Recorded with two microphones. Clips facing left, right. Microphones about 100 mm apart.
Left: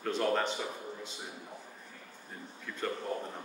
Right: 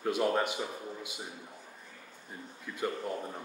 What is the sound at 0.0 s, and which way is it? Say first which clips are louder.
Speech: right 1 dB; 10° right (ahead or behind).